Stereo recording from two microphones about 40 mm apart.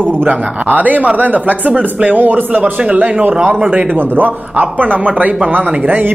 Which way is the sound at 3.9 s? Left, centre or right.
Right.